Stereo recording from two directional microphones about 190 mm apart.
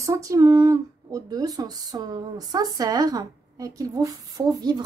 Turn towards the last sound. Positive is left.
turn(degrees=-20)  # may be behind; listen again after turning